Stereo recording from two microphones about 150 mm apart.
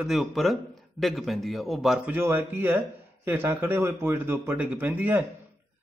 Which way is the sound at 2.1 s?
15° right (ahead or behind).